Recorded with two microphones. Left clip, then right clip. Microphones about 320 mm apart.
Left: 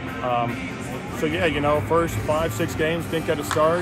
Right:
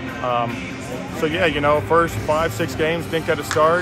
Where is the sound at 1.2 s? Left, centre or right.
Centre.